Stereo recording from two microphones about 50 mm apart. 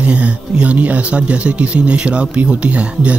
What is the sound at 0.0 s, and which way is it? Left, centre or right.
Speech, right.